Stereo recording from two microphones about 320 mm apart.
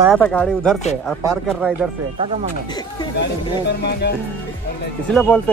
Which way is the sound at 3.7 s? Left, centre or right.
Left.